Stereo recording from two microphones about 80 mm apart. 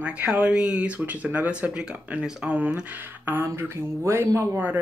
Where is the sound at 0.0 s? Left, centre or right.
Centre.